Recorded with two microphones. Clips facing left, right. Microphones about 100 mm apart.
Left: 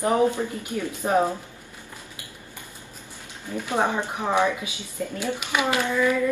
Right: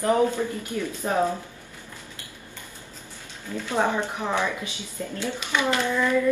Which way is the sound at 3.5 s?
15° left (ahead or behind).